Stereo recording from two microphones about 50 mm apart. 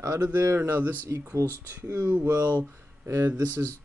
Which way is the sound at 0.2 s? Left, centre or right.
Right.